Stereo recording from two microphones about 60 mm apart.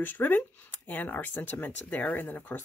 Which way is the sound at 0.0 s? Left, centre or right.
Left.